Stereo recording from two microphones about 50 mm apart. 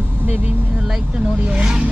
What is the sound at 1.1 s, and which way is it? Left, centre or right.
Speech, right.